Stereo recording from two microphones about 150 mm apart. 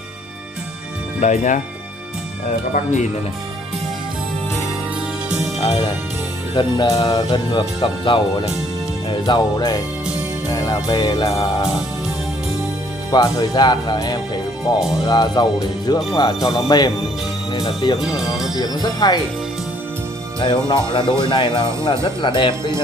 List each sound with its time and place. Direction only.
1.2 s speech: 55° left (ahead or behind)
2.7 s speech: 55° left (ahead or behind)
5.6 s speech: 25° left (ahead or behind)
13.1 s speech: 25° left (ahead or behind)
20.3 s speech: 30° left (ahead or behind)